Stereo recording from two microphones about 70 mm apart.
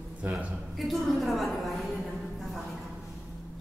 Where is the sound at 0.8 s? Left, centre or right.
Centre.